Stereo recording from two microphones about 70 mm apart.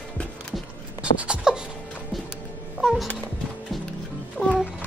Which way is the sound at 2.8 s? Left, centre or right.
Centre.